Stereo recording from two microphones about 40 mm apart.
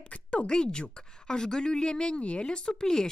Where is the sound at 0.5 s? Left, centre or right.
Centre.